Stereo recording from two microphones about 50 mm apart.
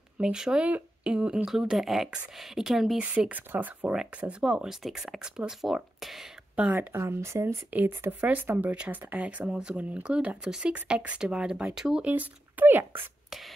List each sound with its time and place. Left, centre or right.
0.2 s speech: centre
3.0 s speech: right
3.9 s speech: centre
4.8 s speech: centre
5.6 s speech: centre
6.5 s speech: right
6.9 s speech: right
8.2 s speech: right
9.5 s speech: centre
12.0 s speech: right